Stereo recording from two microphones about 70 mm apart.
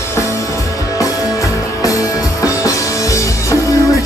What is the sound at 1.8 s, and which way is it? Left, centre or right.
Music, left.